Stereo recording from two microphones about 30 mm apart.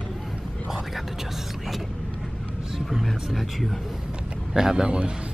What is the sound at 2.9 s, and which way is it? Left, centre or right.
Speech, centre.